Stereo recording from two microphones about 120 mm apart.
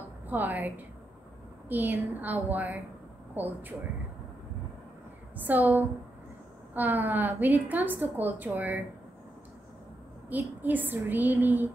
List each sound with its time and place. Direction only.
0.3 s a woman's voice: 15° right (ahead or behind)
5.3 s a woman's voice: 15° right (ahead or behind)
10.3 s a woman's voice: 15° right (ahead or behind)